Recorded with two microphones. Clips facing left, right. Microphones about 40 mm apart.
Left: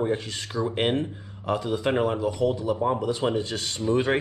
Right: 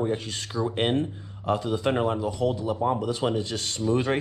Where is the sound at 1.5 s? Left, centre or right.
Left.